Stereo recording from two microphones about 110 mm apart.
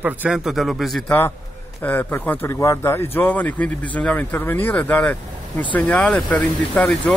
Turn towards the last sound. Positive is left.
turn(degrees=10)  # may be behind; listen again after turning